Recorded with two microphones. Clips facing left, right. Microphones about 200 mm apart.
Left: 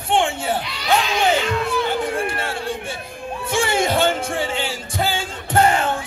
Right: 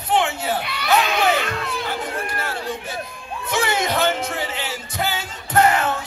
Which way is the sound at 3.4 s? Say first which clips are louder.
Left 2 dB; 30° left (ahead or behind).